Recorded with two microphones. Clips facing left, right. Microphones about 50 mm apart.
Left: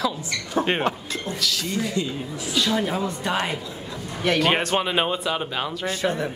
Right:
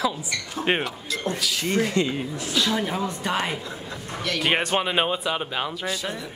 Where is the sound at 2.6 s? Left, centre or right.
Centre.